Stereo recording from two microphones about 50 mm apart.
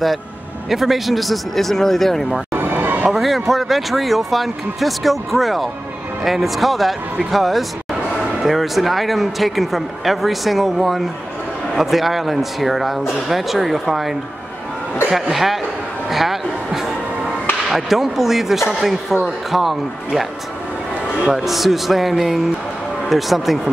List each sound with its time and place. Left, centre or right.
0.7 s speech: centre
2.5 s a sound: right
3.1 s speech: centre
21.3 s speech: centre